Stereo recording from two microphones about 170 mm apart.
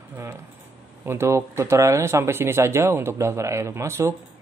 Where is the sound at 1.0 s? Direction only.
15° right (ahead or behind).